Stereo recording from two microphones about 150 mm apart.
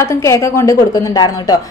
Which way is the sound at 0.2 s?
20° left (ahead or behind).